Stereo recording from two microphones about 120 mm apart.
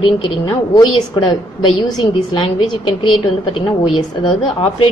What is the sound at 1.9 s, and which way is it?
A woman's voice, 45° left (ahead or behind).